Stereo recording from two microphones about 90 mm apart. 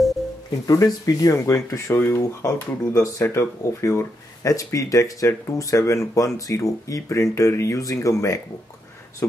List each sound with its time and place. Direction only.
0.7 s speech: 40° left (ahead or behind)
9.2 s speech: 20° left (ahead or behind)